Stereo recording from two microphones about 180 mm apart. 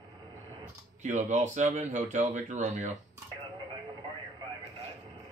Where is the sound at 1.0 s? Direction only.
40° right (ahead or behind).